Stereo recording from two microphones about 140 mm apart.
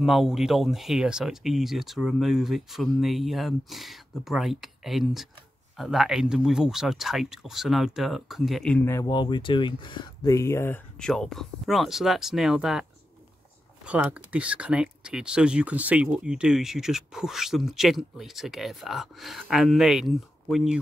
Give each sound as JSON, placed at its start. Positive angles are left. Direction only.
{"t": 0.0, "sound": "speech", "side_deg": 0}
{"t": 9.0, "sound": "speech", "side_deg": 35}
{"t": 11.0, "sound": "speech", "side_deg": 5}
{"t": 13.8, "sound": "speech", "side_deg": -10}